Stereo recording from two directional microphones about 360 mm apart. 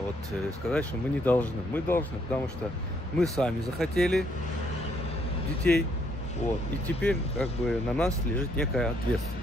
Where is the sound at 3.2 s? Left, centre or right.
Centre.